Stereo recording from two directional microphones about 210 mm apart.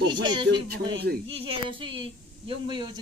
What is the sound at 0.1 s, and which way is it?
Speech, 20° right (ahead or behind).